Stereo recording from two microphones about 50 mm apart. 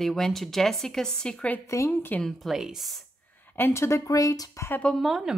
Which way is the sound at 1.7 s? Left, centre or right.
Left.